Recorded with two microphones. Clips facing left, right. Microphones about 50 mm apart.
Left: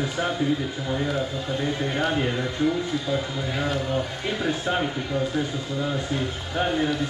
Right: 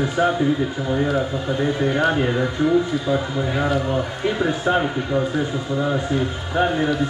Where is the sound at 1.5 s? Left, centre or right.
Right.